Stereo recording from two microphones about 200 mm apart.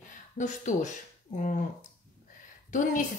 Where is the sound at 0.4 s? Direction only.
40° left (ahead or behind).